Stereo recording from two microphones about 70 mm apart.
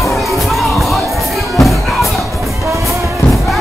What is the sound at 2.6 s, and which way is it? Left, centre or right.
Music, right.